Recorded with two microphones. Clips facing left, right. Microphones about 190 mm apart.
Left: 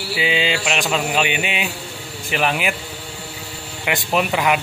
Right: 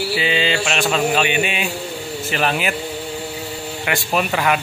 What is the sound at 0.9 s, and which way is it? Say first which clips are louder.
Speech: right 4 dB; 15° left (ahead or behind).